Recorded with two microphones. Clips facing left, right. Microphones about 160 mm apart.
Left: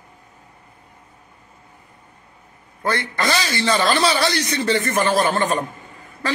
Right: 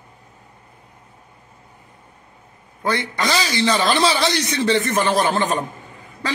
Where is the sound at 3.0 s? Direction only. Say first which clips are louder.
Even; 10° right (ahead or behind).